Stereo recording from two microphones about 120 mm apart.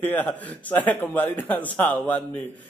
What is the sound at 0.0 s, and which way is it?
A man's voice, 15° left (ahead or behind).